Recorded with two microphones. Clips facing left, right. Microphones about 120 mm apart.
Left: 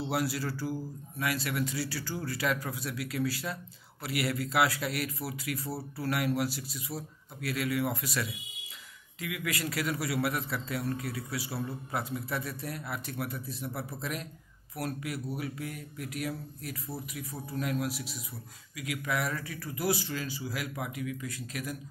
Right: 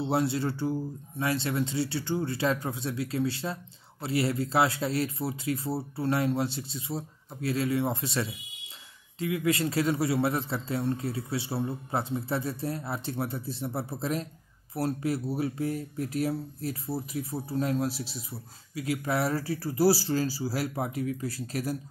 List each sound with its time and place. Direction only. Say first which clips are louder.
0.0 s a man's voice: right 5 dB; 25° right (ahead or behind)